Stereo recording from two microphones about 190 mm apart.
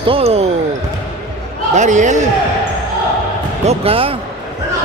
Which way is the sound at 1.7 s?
40° right (ahead or behind).